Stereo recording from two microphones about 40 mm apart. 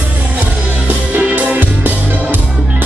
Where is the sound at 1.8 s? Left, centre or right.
Right.